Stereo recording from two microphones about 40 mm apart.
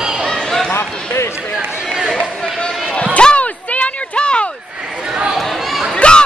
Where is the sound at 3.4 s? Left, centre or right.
Left.